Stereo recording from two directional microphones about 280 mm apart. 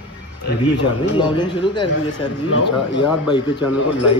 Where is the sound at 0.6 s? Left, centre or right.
Centre.